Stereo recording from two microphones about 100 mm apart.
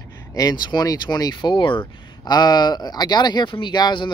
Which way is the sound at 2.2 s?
45° left (ahead or behind).